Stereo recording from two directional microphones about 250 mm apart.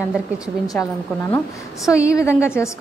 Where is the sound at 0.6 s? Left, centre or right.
Centre.